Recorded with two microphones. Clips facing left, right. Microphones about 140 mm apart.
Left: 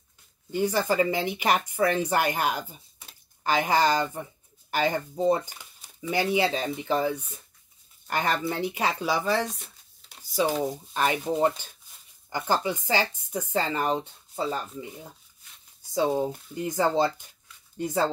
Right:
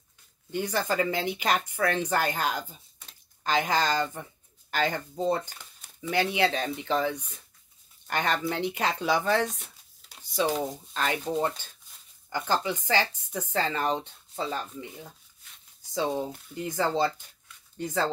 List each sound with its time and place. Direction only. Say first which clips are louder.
0.5 s speech: left 4 dB; 10° left (ahead or behind)
15.9 s speech: left 4 dB; 10° left (ahead or behind)
16.7 s speech: left 2 dB; 15° left (ahead or behind)